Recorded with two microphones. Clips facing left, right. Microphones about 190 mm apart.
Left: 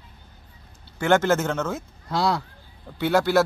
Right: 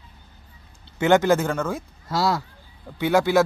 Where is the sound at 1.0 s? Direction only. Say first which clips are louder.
Right 2 dB; 15° right (ahead or behind).